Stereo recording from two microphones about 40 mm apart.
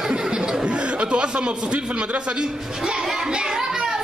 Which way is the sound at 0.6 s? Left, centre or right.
Right.